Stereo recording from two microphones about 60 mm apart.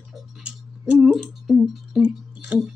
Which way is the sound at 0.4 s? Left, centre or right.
Centre.